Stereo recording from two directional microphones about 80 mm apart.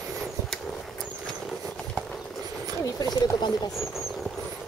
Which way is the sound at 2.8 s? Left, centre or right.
Left.